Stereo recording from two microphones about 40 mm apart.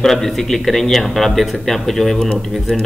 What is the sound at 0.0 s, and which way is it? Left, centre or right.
Speech, centre.